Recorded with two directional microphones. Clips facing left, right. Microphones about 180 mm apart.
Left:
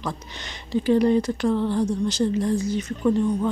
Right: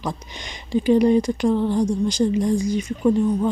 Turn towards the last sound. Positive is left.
turn(degrees=-15)  # may be behind; listen again after turning